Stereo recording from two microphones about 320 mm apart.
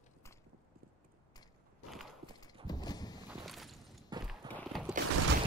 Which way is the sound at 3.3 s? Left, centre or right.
Centre.